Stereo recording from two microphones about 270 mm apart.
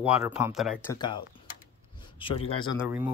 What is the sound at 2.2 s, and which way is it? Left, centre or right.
Speech, centre.